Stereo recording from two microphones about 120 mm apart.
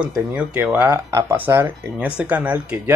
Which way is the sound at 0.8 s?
20° right (ahead or behind).